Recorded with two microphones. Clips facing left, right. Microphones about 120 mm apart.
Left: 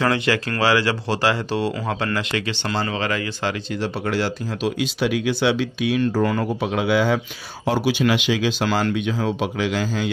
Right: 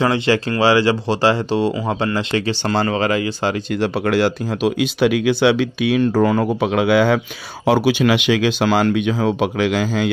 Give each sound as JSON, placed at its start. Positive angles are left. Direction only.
{"t": 0.0, "sound": "speech", "side_deg": -25}
{"t": 2.7, "sound": "speech", "side_deg": -45}
{"t": 3.1, "sound": "speech", "side_deg": -30}
{"t": 3.8, "sound": "speech", "side_deg": -65}